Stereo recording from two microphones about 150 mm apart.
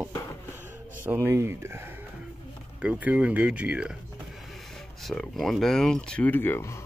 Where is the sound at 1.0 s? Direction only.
15° right (ahead or behind).